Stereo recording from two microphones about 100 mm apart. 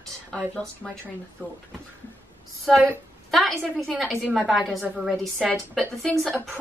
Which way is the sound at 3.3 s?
Centre (ahead or behind).